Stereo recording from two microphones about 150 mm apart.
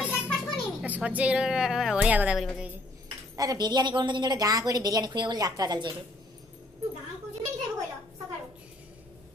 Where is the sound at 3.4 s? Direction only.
25° right (ahead or behind).